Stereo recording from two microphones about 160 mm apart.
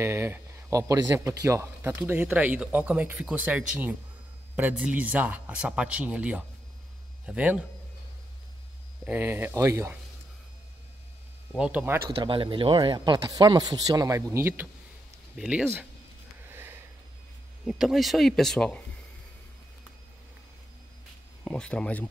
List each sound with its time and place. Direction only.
0.0 s speech: 15° right (ahead or behind)
9.0 s speech: 10° right (ahead or behind)
11.5 s speech: 10° right (ahead or behind)
12.1 s speech: 35° right (ahead or behind); by 15.9 s 5° right (ahead or behind)
16.4 s a sound: 15° right (ahead or behind)
17.6 s speech: centre (ahead or behind)
21.5 s speech: 5° left (ahead or behind)